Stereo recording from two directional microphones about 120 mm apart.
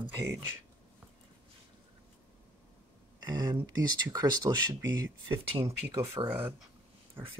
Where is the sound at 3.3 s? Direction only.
35° right (ahead or behind).